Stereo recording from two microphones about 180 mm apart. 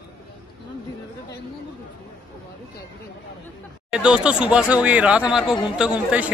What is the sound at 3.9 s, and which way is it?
Speech, 5° right (ahead or behind).